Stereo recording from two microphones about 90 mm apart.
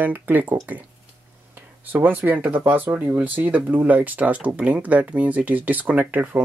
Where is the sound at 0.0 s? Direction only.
20° right (ahead or behind).